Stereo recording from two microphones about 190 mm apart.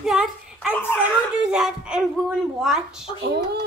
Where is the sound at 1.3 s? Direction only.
5° right (ahead or behind).